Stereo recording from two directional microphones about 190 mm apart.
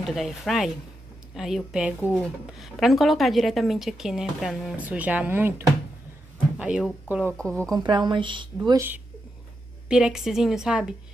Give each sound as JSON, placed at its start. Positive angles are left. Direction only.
{"t": 0.0, "sound": "speech", "side_deg": 0}
{"t": 2.0, "sound": "speech", "side_deg": 10}
{"t": 2.6, "sound": "speech", "side_deg": 0}
{"t": 7.2, "sound": "speech", "side_deg": 5}
{"t": 7.8, "sound": "speech", "side_deg": -25}
{"t": 9.8, "sound": "speech", "side_deg": -5}